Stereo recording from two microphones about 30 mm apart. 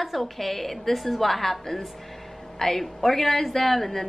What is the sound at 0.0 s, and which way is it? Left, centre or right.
A woman's voice, centre.